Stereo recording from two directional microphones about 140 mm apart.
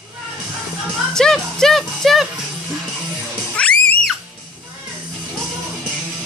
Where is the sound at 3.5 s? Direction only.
10° left (ahead or behind).